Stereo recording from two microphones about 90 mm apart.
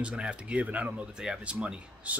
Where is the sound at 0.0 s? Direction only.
10° right (ahead or behind).